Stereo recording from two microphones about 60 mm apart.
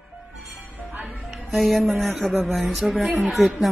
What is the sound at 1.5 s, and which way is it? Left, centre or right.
Speech, centre.